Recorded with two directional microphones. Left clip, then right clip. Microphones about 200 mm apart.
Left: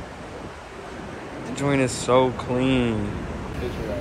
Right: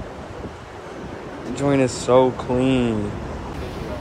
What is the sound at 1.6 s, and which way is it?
Speech, 15° right (ahead or behind).